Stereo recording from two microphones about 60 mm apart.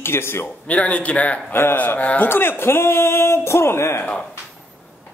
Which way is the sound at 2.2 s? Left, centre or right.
Left.